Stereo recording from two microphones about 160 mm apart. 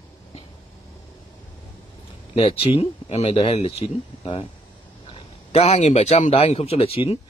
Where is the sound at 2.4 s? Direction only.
35° left (ahead or behind).